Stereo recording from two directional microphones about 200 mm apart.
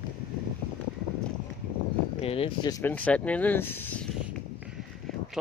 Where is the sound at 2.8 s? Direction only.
10° left (ahead or behind).